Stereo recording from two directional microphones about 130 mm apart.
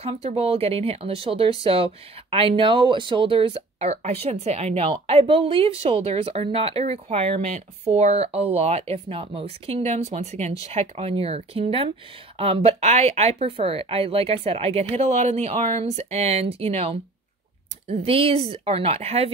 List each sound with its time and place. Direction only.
0.0 s speech: 50° right (ahead or behind)